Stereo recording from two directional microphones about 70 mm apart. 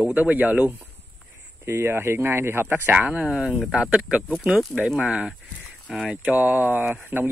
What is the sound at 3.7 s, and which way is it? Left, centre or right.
Speech, centre.